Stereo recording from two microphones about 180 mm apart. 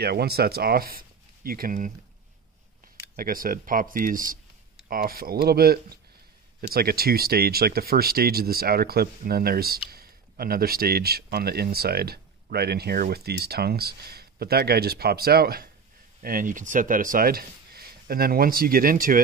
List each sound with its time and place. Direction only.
0.0 s speech: 60° right (ahead or behind)
3.2 s speech: 50° right (ahead or behind)